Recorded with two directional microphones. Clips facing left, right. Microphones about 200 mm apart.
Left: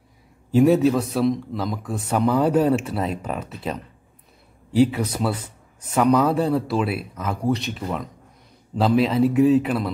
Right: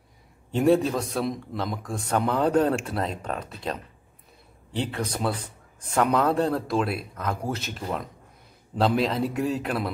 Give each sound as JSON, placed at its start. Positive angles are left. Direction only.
{"t": 0.5, "sound": "a man's voice", "side_deg": 5}